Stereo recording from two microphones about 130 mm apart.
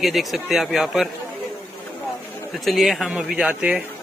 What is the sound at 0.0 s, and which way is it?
Speech, centre (ahead or behind).